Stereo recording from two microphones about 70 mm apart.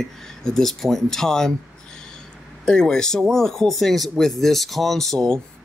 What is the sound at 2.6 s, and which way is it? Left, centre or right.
Speech, centre.